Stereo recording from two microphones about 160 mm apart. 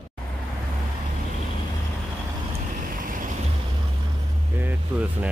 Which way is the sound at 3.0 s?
55° right (ahead or behind).